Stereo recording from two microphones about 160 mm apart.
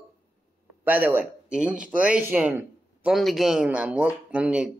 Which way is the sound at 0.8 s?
10° right (ahead or behind).